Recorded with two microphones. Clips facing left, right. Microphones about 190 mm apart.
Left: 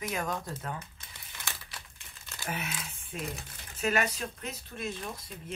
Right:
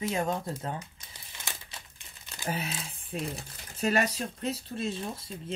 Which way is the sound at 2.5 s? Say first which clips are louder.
Right 2 dB; 30° right (ahead or behind).